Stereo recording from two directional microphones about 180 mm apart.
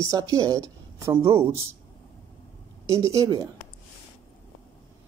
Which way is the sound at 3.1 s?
15° right (ahead or behind).